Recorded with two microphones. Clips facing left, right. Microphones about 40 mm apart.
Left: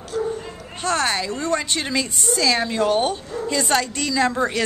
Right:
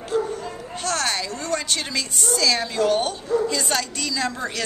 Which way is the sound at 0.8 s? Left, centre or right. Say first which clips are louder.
Left 4 dB; centre.